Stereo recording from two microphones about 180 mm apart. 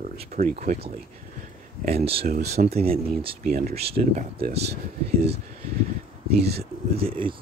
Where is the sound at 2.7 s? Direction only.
35° right (ahead or behind).